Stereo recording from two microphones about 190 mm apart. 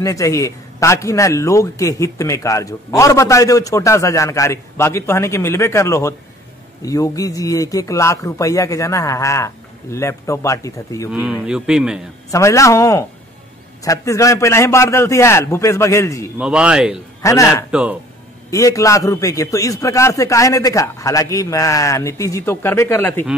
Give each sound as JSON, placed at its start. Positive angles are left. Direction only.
{"t": 0.0, "sound": "a man's voice", "side_deg": 15}
{"t": 11.1, "sound": "speech", "side_deg": -5}
{"t": 12.3, "sound": "a man's voice", "side_deg": 15}
{"t": 16.3, "sound": "speech", "side_deg": -5}
{"t": 17.2, "sound": "a man's voice", "side_deg": 15}
{"t": 17.6, "sound": "speech", "side_deg": -5}
{"t": 18.5, "sound": "a man's voice", "side_deg": 15}